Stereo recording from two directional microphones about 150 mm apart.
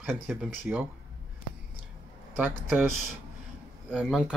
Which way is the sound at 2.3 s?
15° right (ahead or behind).